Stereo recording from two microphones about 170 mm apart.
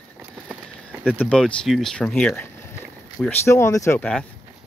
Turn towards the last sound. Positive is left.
turn(degrees=15)  # may be behind; listen again after turning